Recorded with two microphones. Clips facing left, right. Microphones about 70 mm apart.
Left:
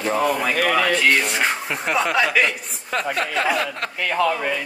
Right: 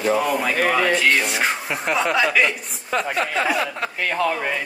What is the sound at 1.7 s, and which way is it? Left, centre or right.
Speech, centre.